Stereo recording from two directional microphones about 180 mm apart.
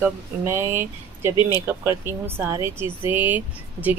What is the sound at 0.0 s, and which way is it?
Speech, 15° right (ahead or behind).